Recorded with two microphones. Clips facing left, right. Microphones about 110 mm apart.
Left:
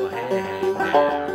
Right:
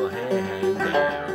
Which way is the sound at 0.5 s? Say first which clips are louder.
Left 5 dB; 30° left (ahead or behind).